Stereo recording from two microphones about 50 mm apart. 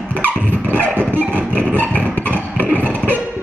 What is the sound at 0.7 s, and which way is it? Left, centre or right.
Music, right.